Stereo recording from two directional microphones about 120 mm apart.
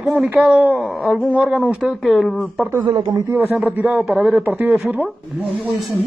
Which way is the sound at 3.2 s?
20° right (ahead or behind).